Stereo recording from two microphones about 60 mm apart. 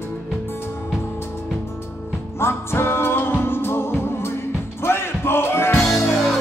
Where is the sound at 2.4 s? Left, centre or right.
Left.